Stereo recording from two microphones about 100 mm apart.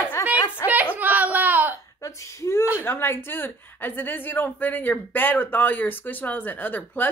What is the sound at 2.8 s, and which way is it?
Speech, 20° left (ahead or behind).